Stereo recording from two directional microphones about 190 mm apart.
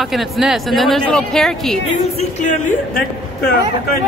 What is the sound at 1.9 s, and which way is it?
A man's voice, 40° left (ahead or behind).